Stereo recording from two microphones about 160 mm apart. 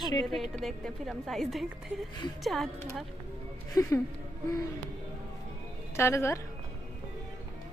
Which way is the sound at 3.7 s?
20° left (ahead or behind).